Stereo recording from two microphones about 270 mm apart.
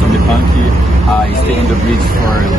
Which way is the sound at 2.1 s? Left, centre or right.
Right.